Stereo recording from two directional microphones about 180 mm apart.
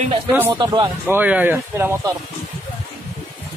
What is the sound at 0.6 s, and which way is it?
Speech, 20° right (ahead or behind).